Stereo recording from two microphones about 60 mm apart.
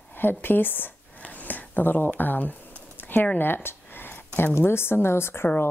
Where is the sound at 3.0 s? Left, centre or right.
Left.